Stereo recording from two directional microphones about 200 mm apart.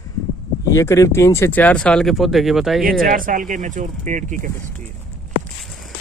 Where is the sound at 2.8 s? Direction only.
45° right (ahead or behind).